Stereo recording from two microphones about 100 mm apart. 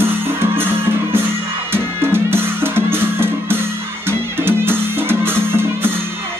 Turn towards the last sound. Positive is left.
turn(degrees=-25)  # may be behind; listen again after turning